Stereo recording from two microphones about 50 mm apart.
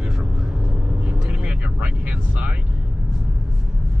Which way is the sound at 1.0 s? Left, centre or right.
Right.